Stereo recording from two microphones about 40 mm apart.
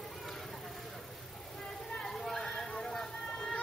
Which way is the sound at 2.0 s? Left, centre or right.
Centre.